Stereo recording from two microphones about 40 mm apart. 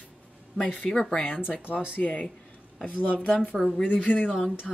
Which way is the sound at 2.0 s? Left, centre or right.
Left.